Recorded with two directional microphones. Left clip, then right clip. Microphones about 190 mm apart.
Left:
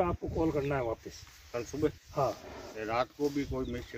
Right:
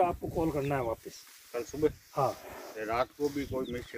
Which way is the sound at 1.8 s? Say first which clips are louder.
Right 2 dB; 55° left (ahead or behind).